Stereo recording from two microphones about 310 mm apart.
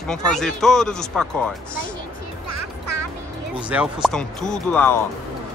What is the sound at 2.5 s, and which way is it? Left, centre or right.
Music, right.